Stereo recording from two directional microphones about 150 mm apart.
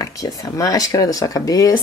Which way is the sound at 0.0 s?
25° left (ahead or behind).